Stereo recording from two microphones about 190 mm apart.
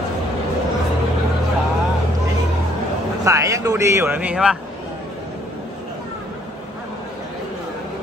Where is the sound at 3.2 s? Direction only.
15° right (ahead or behind).